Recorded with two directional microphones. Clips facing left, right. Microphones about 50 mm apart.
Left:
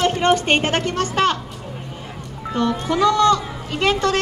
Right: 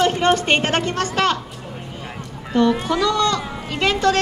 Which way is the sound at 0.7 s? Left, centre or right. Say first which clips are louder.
Even; right.